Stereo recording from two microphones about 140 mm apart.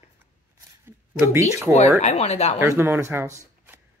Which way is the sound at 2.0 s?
50° left (ahead or behind).